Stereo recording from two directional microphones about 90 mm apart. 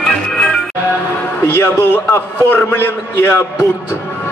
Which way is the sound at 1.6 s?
25° left (ahead or behind).